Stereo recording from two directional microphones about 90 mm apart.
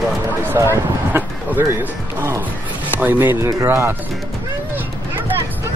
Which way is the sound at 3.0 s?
20° right (ahead or behind).